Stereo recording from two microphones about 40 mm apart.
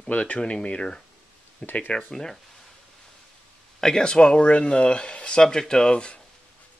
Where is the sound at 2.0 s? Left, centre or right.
Centre.